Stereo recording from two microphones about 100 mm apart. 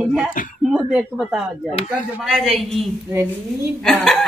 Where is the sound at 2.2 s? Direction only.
Centre (ahead or behind).